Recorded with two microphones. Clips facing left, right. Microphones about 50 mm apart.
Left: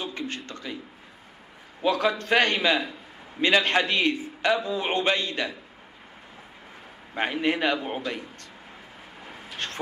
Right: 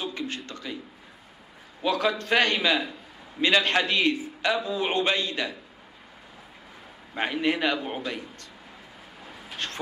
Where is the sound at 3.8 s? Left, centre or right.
Left.